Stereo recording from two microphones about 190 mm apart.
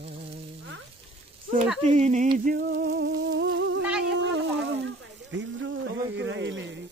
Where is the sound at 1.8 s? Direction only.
35° right (ahead or behind).